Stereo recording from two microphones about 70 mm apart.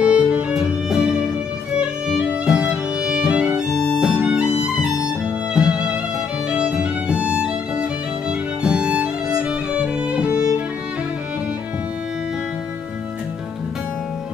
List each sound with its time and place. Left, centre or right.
0.0 s music: centre
3.7 s music: centre
4.0 s music: centre
8.3 s violin: centre
9.4 s music: centre